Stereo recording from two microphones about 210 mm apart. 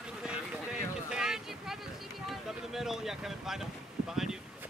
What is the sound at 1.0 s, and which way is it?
Boat, 5° right (ahead or behind).